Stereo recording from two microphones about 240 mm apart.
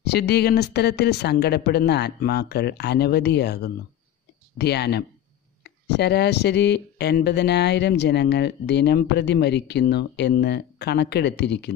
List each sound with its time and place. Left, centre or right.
0.0 s speech: left